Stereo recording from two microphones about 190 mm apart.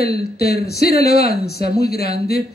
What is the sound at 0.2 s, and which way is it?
A man's voice, 55° left (ahead or behind).